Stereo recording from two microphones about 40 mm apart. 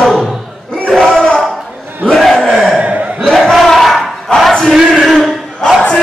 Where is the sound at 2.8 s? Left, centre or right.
Right.